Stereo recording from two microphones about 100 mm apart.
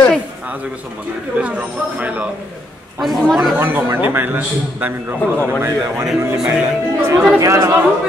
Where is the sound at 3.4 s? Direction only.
25° right (ahead or behind).